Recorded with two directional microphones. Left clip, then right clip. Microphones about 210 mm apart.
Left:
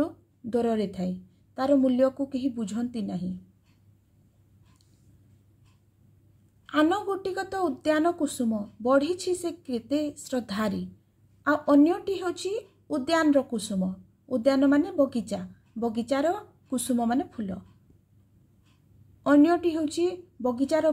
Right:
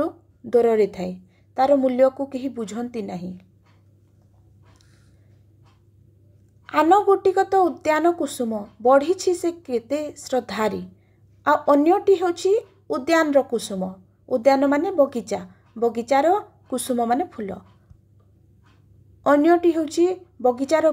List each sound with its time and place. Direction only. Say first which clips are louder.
0.0 s a sound: right 5 dB; 5° left (ahead or behind)
1.6 s speech: right 6 dB; 5° left (ahead or behind)
6.6 s speech: right 8 dB; 5° left (ahead or behind)
19.2 s speech: right 5 dB; 5° left (ahead or behind)